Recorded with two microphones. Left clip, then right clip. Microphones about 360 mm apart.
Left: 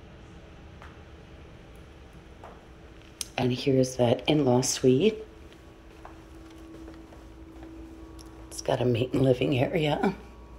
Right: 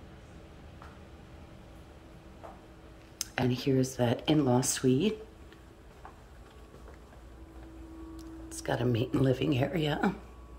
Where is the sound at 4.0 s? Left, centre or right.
Centre.